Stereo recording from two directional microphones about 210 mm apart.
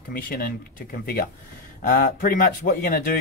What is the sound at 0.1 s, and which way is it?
A man's voice, 45° left (ahead or behind).